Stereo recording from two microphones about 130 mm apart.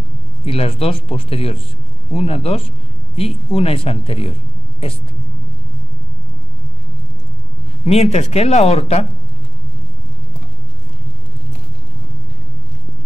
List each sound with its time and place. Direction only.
0.5 s speech: 50° left (ahead or behind)
7.8 s speech: 50° left (ahead or behind)